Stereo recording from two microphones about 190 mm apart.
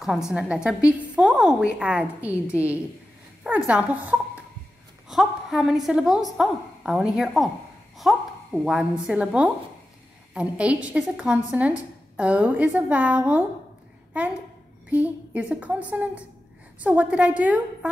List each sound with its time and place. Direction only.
0.0 s a woman's voice: centre (ahead or behind)